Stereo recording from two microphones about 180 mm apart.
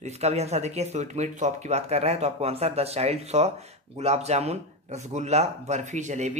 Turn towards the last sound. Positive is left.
turn(degrees=-40)  # may be behind; listen again after turning